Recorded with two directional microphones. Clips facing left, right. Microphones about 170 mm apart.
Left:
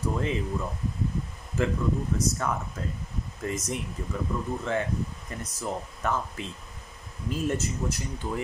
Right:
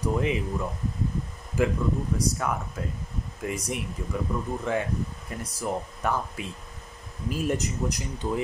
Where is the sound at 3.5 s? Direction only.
10° right (ahead or behind).